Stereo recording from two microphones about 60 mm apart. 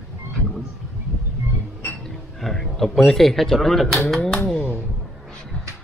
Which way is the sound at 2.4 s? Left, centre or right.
Centre.